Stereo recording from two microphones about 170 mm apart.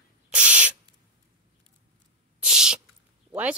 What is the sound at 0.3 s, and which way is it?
Owl, 5° right (ahead or behind).